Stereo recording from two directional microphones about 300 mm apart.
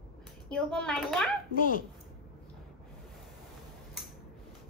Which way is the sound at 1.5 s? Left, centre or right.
Left.